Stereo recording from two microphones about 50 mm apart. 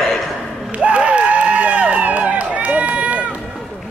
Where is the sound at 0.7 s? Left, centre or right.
Right.